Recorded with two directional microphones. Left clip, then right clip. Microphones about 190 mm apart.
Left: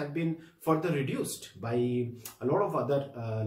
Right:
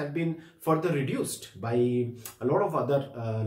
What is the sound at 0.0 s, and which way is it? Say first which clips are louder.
Speech: right 2 dB; centre (ahead or behind).